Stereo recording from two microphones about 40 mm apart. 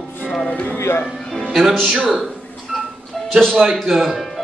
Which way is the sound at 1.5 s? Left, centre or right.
Centre.